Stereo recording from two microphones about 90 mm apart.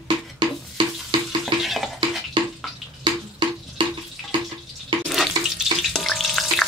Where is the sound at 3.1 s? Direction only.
55° right (ahead or behind).